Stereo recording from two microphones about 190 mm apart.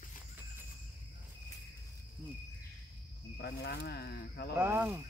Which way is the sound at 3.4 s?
55° left (ahead or behind).